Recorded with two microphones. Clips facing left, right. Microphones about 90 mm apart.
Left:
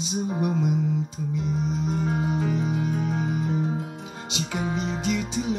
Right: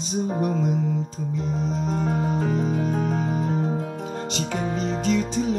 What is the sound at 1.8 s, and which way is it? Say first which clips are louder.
Music: right 3 dB; 40° right (ahead or behind).